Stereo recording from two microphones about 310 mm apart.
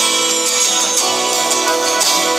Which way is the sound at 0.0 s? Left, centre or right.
Centre.